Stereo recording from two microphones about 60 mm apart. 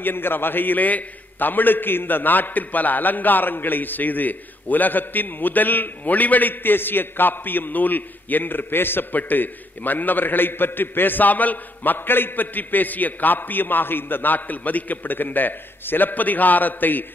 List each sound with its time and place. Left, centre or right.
0.0 s a man's voice: left